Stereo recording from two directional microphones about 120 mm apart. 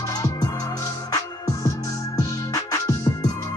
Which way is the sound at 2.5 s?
30° left (ahead or behind).